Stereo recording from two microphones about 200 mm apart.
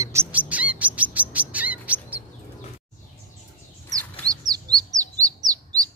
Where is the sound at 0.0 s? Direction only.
15° right (ahead or behind).